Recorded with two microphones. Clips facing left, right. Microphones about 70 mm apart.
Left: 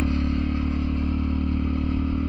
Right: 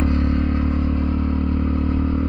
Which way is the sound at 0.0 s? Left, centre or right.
Right.